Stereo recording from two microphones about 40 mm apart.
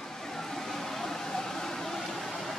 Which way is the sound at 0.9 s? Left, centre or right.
Centre.